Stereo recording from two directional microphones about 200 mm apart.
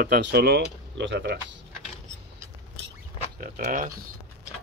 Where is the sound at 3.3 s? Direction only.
45° right (ahead or behind).